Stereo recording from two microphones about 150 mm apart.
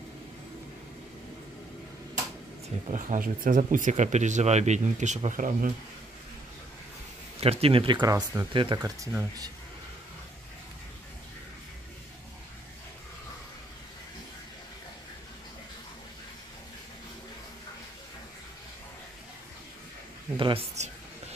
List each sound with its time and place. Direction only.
2.9 s speech: 60° right (ahead or behind)
7.3 s speech: 40° right (ahead or behind); by 9.5 s 20° right (ahead or behind)
20.3 s speech: 35° right (ahead or behind)
20.7 s a sound: 50° right (ahead or behind)